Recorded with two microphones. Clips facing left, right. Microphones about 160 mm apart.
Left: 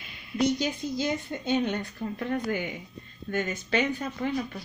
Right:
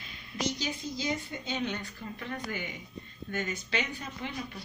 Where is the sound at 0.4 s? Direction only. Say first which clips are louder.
Left 8 dB; 55° left (ahead or behind).